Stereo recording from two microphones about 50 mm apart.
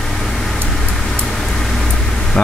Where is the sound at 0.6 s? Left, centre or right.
Centre.